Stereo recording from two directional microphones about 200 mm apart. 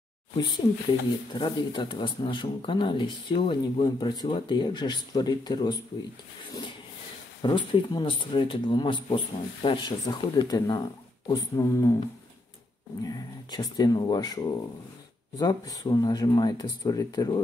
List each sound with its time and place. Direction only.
1.3 s speech: 20° left (ahead or behind)
7.4 s speech: 25° left (ahead or behind)
13.0 s speech: 20° left (ahead or behind)